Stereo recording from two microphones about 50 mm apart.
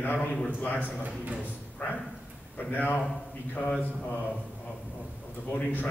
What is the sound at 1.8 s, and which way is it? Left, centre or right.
A man's voice, left.